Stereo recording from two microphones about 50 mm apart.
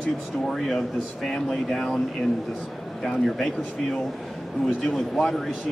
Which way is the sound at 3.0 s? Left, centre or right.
Centre.